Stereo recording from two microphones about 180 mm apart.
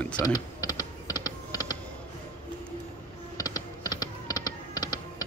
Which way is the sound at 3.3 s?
20° left (ahead or behind).